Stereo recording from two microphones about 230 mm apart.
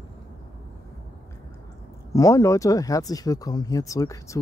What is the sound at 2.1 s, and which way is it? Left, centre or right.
Speech, centre.